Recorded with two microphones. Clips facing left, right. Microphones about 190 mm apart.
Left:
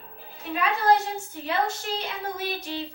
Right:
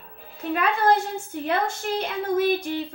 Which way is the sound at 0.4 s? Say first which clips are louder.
Right 4 dB; 55° right (ahead or behind).